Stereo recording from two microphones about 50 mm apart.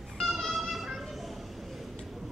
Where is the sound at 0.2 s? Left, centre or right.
Centre.